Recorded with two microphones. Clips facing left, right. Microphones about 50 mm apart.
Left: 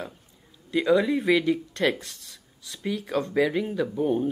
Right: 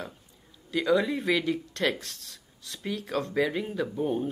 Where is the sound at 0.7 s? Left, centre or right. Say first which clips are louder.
Left 3 dB; centre.